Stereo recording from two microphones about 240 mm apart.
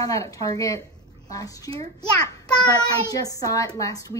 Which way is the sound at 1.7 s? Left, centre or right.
Right.